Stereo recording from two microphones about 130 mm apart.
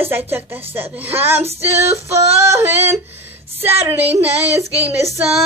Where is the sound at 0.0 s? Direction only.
15° right (ahead or behind).